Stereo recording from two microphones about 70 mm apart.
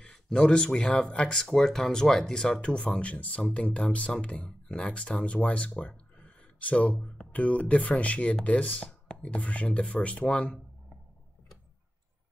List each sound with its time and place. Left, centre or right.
0.0 s speech: centre